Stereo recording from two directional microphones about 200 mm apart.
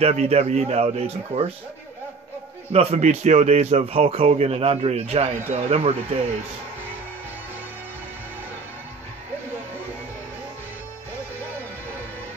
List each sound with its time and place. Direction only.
0.0 s a man's voice: 30° right (ahead or behind)
2.7 s a man's voice: 30° right (ahead or behind)